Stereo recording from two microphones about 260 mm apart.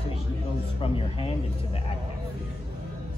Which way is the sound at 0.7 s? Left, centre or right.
Left.